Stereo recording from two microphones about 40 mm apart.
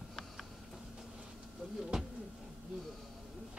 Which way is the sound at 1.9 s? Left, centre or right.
Centre.